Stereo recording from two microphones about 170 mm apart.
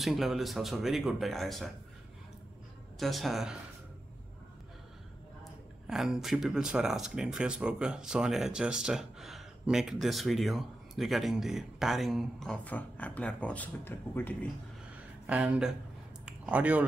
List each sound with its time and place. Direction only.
0.0 s speech: centre (ahead or behind)
3.0 s speech: centre (ahead or behind)
5.9 s speech: 5° right (ahead or behind)
15.2 s speech: 5° right (ahead or behind)
16.3 s a sound: 10° right (ahead or behind)